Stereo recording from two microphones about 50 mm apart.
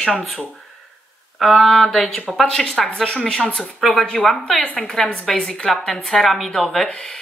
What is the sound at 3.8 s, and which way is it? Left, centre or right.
A woman's voice, centre.